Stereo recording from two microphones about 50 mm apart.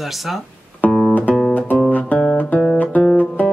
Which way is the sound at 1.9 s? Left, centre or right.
Left.